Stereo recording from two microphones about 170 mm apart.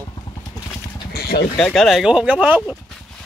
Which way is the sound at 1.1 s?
65° left (ahead or behind).